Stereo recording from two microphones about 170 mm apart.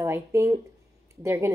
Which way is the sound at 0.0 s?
15° right (ahead or behind).